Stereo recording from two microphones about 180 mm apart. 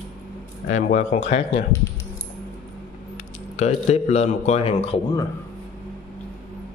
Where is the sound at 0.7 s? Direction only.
40° left (ahead or behind).